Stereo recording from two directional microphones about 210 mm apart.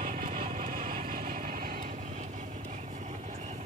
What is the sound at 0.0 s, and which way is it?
Vehicle, 35° right (ahead or behind).